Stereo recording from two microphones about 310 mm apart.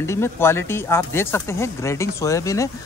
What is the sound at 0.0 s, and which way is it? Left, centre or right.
Speech, centre.